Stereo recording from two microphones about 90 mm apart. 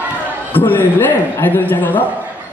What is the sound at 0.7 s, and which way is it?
A man's voice, 20° left (ahead or behind).